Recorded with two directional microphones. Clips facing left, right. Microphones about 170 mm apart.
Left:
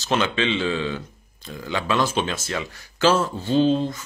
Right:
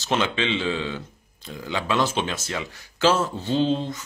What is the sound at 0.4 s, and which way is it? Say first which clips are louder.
Speech: left 2 dB; 20° right (ahead or behind).